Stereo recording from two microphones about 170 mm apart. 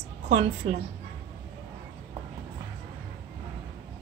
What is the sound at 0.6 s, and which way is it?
Speech, 40° right (ahead or behind).